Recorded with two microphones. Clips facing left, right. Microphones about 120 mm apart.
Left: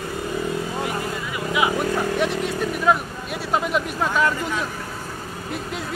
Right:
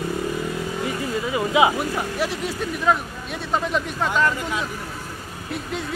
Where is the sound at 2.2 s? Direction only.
Centre (ahead or behind).